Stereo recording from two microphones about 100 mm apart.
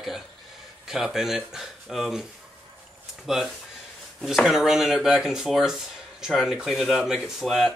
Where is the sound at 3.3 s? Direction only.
5° right (ahead or behind).